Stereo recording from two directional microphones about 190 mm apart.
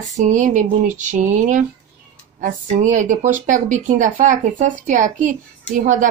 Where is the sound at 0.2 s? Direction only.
40° right (ahead or behind).